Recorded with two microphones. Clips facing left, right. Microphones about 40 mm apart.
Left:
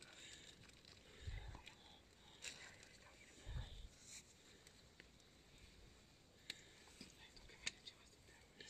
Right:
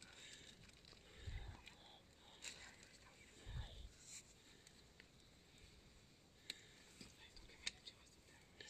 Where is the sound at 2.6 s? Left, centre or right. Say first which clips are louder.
Left 1 dB; centre.